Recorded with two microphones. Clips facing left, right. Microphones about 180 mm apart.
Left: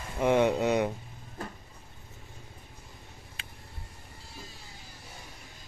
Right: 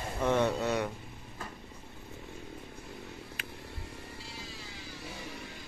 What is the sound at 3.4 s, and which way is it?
Vehicle, 30° left (ahead or behind).